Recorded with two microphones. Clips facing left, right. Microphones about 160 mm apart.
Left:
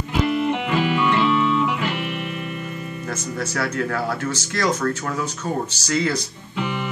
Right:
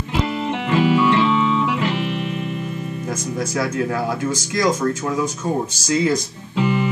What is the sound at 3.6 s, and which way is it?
Music, 15° right (ahead or behind).